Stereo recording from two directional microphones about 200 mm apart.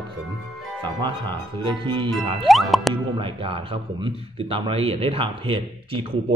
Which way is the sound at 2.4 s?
Centre (ahead or behind).